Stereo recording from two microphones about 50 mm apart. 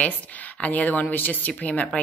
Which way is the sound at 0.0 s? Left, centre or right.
Left.